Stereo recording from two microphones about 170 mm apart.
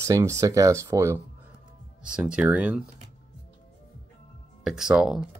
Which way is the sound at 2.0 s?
5° right (ahead or behind).